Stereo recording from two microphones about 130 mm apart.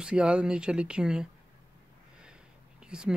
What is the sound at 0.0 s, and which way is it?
Speech, 10° right (ahead or behind).